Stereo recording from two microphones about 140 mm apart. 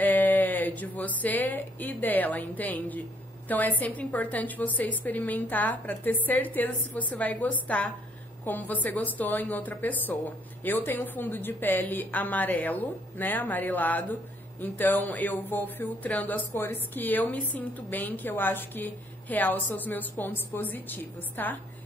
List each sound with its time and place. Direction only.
0.0 s a woman's voice: 10° left (ahead or behind)